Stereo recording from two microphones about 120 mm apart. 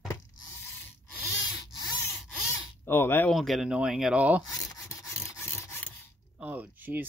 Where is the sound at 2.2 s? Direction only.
15° left (ahead or behind).